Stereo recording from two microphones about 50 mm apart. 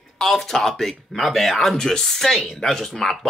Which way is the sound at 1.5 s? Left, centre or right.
Centre.